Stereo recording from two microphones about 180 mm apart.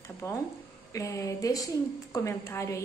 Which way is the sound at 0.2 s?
15° left (ahead or behind).